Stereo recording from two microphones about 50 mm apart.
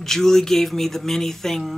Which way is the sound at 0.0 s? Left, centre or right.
Centre.